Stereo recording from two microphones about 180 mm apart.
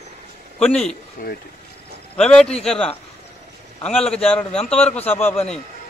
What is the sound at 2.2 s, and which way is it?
Speech, 5° left (ahead or behind).